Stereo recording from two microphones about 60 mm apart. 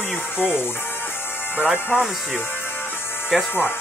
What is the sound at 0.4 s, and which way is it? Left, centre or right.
Speech, left.